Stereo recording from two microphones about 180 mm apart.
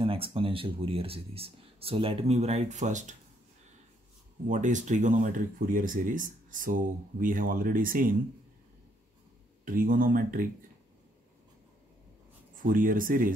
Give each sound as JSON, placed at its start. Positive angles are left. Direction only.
{"t": 0.0, "sound": "speech", "side_deg": -30}
{"t": 4.5, "sound": "speech", "side_deg": -45}
{"t": 9.7, "sound": "speech", "side_deg": -50}
{"t": 12.6, "sound": "speech", "side_deg": -50}